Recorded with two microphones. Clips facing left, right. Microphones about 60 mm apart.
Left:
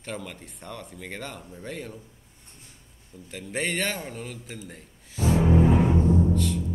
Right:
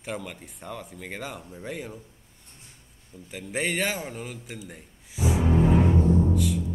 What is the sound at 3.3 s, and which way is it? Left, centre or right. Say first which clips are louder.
A man's voice: right 1 dB; centre.